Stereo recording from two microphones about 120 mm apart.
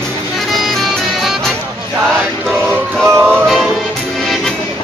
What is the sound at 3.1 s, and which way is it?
Music, 20° right (ahead or behind).